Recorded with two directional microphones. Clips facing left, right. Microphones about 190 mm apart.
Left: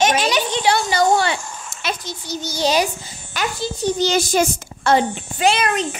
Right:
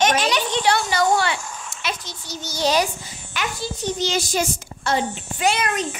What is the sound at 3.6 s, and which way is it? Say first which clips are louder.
Speech: left 6 dB; 35° left (ahead or behind).